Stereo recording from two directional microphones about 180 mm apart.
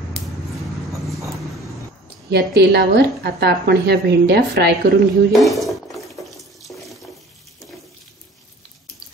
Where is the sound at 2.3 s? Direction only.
65° right (ahead or behind).